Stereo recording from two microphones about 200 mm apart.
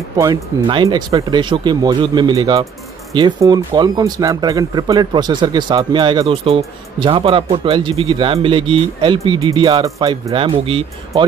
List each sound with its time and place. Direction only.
0.2 s speech: 20° right (ahead or behind)